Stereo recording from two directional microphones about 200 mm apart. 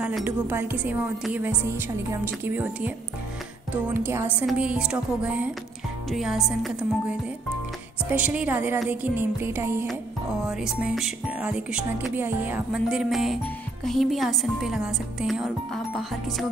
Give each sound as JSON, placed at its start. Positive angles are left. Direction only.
{"t": 0.0, "sound": "speech", "side_deg": -5}